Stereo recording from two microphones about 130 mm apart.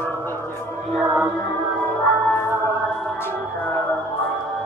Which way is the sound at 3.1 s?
15° left (ahead or behind).